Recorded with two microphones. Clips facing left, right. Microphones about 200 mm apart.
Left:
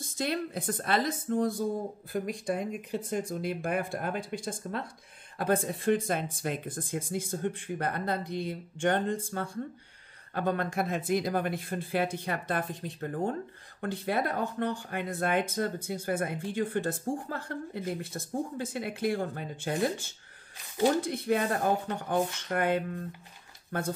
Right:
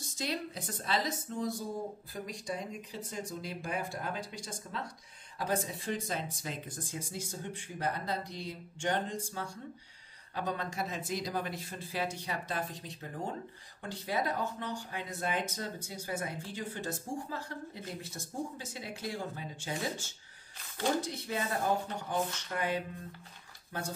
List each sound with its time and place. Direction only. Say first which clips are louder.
0.2 s speech: left 6 dB; 55° left (ahead or behind)